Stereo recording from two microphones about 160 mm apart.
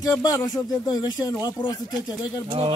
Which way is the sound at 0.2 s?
25° left (ahead or behind).